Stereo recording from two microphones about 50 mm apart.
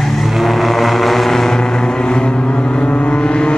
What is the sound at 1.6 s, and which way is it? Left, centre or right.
Vehicle, centre.